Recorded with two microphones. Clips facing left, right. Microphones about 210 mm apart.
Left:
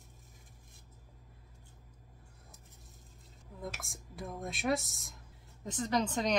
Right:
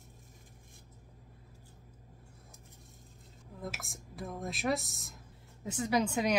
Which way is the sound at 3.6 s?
Centre (ahead or behind).